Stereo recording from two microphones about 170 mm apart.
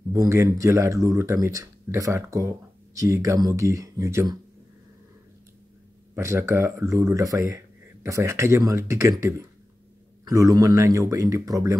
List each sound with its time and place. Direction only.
0.1 s speech: 15° right (ahead or behind)
6.1 s speech: 15° right (ahead or behind)
10.2 s speech: 20° right (ahead or behind)